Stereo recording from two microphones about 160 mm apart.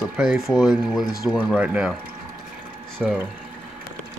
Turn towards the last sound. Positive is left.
turn(degrees=-5)  # may be behind; listen again after turning